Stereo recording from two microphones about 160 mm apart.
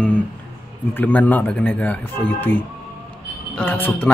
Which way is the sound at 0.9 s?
10° left (ahead or behind).